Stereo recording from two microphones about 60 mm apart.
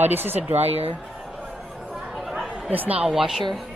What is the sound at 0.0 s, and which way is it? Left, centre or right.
Speech, right.